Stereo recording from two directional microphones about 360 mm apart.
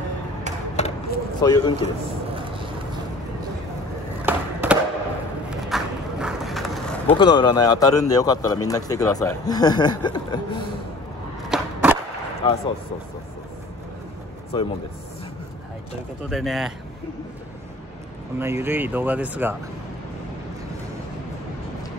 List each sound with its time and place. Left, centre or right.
0.7 s a sound: centre
4.3 s skateboard: centre
5.5 s a sound: centre
7.2 s a man's voice: centre
11.4 s skateboard: centre
12.4 s a man's voice: centre
14.5 s a man's voice: centre
16.3 s speech: centre
18.4 s speech: centre